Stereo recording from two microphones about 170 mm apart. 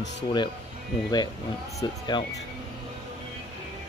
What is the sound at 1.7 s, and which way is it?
Speech, 25° left (ahead or behind).